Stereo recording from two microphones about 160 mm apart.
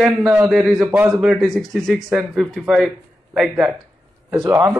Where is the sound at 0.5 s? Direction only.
Centre (ahead or behind).